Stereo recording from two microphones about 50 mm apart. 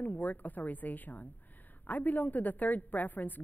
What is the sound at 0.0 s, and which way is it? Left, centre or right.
Speech, left.